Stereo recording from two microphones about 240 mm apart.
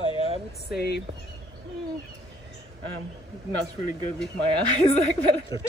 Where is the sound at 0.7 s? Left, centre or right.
Left.